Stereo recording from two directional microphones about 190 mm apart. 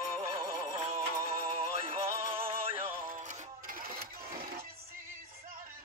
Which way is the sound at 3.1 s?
45° right (ahead or behind).